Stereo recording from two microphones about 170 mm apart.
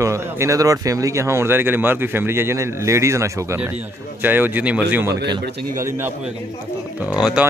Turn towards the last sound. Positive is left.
turn(degrees=-5)  # may be behind; listen again after turning